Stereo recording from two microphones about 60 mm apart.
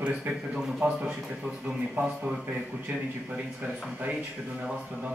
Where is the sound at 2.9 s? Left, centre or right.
Right.